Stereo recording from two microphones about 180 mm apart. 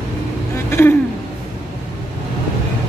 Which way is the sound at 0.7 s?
15° left (ahead or behind).